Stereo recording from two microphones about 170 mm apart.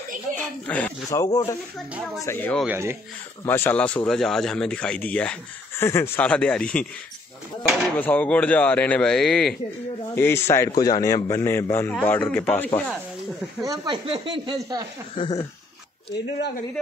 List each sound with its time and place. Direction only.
0.4 s speech: 10° left (ahead or behind)
2.6 s speech: 15° right (ahead or behind)
3.4 s speech: 10° left (ahead or behind)
8.0 s speech: 10° left (ahead or behind)
10.1 s speech: 15° left (ahead or behind)
13.7 s speech: 30° right (ahead or behind)
15.1 s a sound: 25° left (ahead or behind)